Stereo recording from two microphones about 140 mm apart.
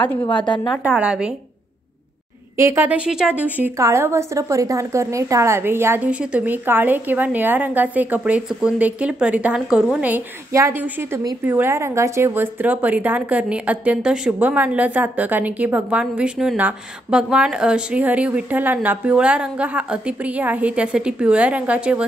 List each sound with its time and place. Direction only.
0.0 s a woman's voice: 15° left (ahead or behind)
0.3 s a woman's voice: 35° left (ahead or behind)
0.8 s a woman's voice: 5° right (ahead or behind)
2.5 s a woman's voice: 20° right (ahead or behind)